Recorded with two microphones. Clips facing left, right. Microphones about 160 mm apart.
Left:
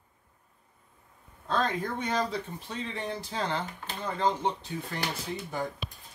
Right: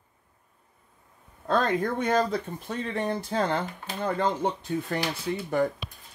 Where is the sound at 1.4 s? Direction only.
55° right (ahead or behind).